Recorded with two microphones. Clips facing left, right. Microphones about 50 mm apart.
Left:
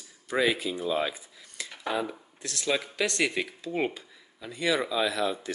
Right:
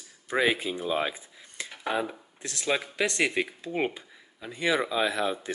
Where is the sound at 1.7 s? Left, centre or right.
Centre.